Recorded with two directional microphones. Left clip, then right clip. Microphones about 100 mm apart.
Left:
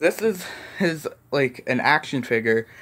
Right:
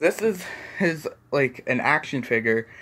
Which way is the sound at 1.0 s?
90° left.